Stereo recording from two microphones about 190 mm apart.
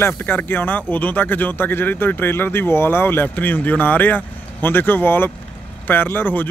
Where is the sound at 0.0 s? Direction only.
10° left (ahead or behind).